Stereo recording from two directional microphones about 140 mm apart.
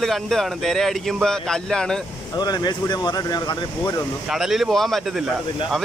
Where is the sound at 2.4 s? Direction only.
30° left (ahead or behind).